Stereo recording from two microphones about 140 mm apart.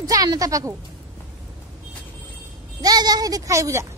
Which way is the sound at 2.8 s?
30° right (ahead or behind).